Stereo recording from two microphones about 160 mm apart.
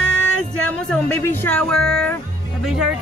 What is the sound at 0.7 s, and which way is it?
Speech, 10° left (ahead or behind).